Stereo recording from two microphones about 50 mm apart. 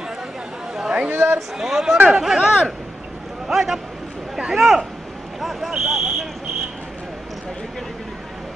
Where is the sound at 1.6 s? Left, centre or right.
Centre.